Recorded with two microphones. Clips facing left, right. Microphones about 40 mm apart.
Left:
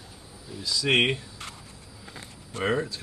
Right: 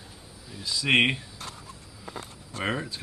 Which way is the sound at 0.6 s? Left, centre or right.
Centre.